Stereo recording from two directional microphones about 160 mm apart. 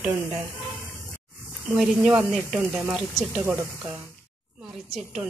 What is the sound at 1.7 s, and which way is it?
A woman's voice, 5° right (ahead or behind).